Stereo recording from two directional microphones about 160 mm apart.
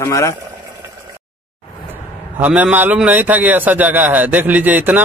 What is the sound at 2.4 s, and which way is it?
Speech, 10° right (ahead or behind).